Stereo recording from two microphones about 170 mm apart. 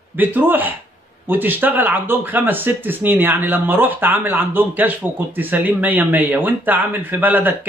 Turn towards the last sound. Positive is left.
turn(degrees=-10)  # may be behind; listen again after turning